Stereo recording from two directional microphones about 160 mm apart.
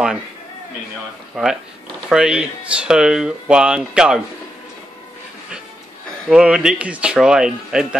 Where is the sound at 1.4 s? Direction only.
5° right (ahead or behind).